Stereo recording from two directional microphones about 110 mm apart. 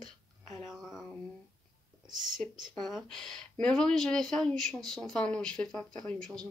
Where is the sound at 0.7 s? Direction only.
5° right (ahead or behind).